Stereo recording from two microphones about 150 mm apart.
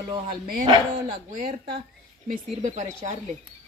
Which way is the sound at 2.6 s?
55° right (ahead or behind).